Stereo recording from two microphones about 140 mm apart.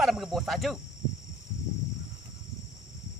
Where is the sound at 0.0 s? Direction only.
Centre (ahead or behind).